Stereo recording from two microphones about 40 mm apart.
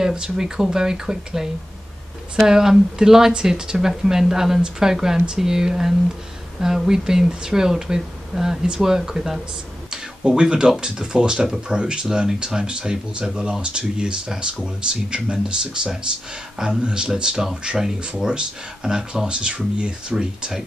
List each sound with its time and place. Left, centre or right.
0.0 s speech: centre
9.8 s a sound: right
10.8 s speech: right